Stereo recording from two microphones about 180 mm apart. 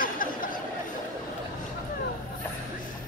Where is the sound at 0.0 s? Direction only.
50° left (ahead or behind).